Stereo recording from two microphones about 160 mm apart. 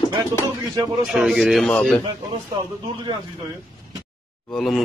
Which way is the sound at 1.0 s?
5° right (ahead or behind).